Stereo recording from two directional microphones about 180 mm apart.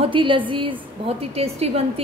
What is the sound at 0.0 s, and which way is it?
A woman's voice, 30° right (ahead or behind).